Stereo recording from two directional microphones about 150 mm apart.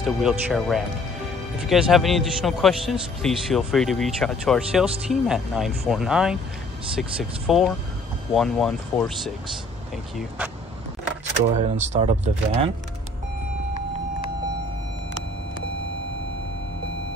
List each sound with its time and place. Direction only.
0.0 s a man's voice: 5° right (ahead or behind)
11.5 s speech: 50° right (ahead or behind)